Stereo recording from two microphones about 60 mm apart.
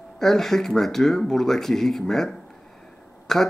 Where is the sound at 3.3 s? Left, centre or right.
Centre.